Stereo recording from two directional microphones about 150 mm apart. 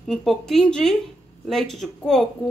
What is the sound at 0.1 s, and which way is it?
A woman's voice, centre (ahead or behind).